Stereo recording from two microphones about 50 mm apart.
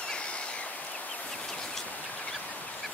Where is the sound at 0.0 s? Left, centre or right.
Centre.